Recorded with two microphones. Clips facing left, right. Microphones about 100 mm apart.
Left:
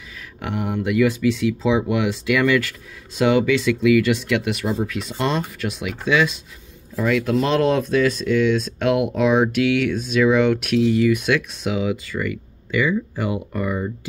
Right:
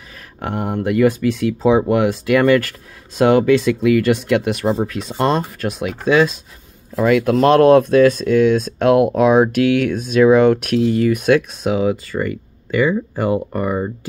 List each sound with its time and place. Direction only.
0.4 s speech: 45° right (ahead or behind)
7.0 s speech: 55° right (ahead or behind); by 13.9 s 40° right (ahead or behind)